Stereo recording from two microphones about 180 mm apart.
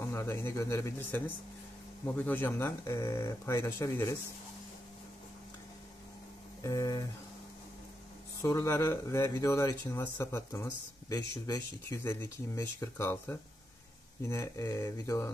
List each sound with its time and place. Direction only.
0.0 s speech: 15° left (ahead or behind)
6.6 s speech: 20° left (ahead or behind)
8.4 s speech: 15° left (ahead or behind)